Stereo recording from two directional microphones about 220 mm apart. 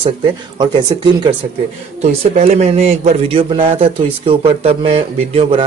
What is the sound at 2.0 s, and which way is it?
A man's voice, 30° right (ahead or behind).